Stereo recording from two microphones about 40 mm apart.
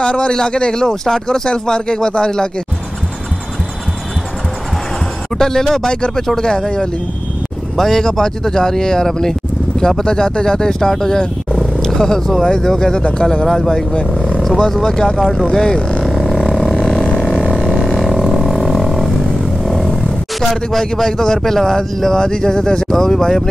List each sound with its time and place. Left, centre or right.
0.0 s speech: left
5.4 s speech: centre
13.5 s speech: centre
16.0 s a sound: centre
17.7 s vehicle: centre
21.0 s speech: centre